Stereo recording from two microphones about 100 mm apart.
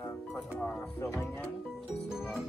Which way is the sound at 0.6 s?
10° left (ahead or behind).